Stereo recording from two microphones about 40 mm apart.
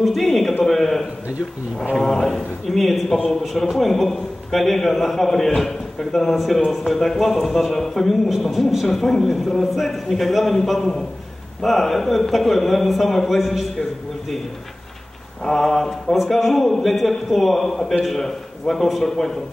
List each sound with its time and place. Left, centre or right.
0.0 s a man's voice: centre
0.7 s a sound: centre
2.0 s speech: centre
15.4 s mantra: centre
16.2 s speech: centre